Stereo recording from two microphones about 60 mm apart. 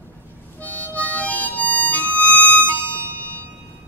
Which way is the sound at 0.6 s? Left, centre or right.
Left.